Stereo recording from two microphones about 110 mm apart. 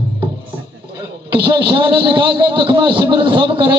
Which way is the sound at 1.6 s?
45° right (ahead or behind).